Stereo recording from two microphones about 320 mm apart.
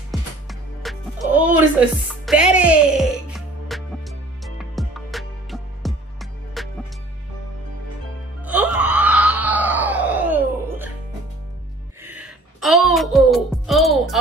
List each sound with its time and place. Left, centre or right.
0.1 s music: centre
8.5 s wail: centre
12.5 s music: centre